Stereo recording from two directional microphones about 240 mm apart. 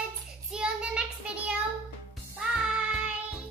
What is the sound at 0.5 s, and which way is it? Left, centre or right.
Child singing, centre.